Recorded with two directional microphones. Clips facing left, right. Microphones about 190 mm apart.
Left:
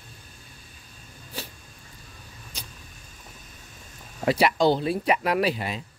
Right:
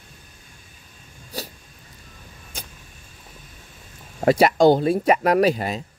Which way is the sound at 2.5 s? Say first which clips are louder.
Right 5 dB; 50° right (ahead or behind).